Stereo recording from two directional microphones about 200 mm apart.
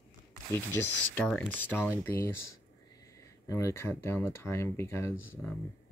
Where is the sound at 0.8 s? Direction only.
15° left (ahead or behind).